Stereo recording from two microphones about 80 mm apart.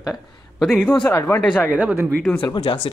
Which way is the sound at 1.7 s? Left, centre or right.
Right.